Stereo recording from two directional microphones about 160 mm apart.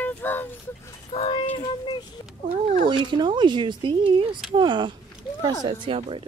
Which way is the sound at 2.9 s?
30° right (ahead or behind).